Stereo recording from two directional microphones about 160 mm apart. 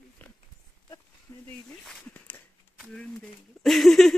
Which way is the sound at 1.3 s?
20° left (ahead or behind).